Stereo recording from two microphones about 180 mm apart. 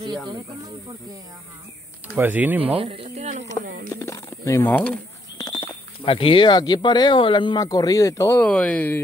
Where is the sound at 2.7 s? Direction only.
30° right (ahead or behind).